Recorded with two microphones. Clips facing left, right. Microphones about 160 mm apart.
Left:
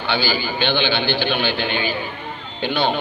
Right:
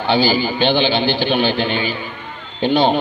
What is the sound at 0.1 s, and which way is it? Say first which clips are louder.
A man's voice: right 6 dB; 35° right (ahead or behind).